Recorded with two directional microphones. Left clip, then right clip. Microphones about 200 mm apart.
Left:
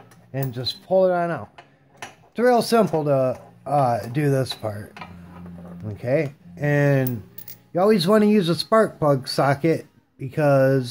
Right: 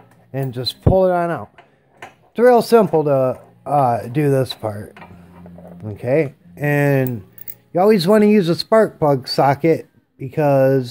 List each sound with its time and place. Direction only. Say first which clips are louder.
0.3 s speech: right 4 dB; 35° right (ahead or behind); by 10.9 s 15° right (ahead or behind)